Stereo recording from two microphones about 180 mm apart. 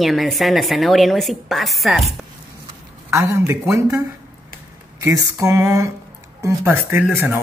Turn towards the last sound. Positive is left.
turn(degrees=-10)  # may be behind; listen again after turning